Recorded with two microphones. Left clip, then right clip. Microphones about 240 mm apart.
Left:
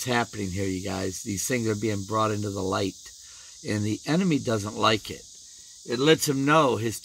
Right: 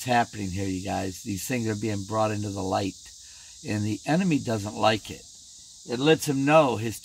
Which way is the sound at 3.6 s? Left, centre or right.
Centre.